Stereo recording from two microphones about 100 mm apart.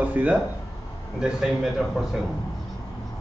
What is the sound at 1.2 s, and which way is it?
Speech, 5° right (ahead or behind).